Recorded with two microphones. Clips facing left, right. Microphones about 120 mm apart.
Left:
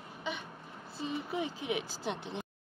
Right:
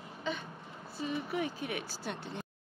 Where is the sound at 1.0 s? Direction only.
25° left (ahead or behind).